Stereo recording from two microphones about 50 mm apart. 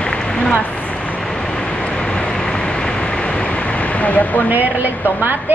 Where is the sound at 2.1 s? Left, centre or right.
Centre; by 4.4 s left.